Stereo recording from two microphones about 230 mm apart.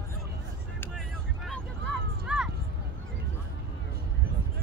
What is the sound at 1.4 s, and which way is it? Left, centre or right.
Vehicle, centre.